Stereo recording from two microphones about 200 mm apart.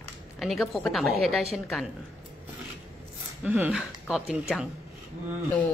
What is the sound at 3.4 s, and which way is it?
Speech, 5° right (ahead or behind).